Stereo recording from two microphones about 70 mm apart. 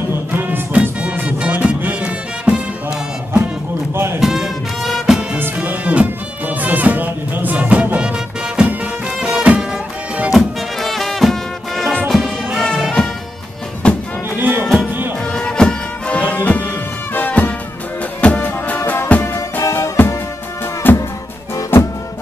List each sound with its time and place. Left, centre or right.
0.3 s music: right
3.9 s music: right
4.2 s music: centre
5.6 s music: right
10.3 s music: centre
13.8 s music: centre
14.3 s music: right
15.3 s music: centre; by 20.2 s left
20.9 s music: left